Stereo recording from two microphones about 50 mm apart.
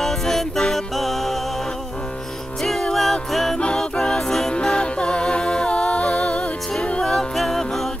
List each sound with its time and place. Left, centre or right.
0.0 s music: centre
2.6 s music: centre
3.5 s music: centre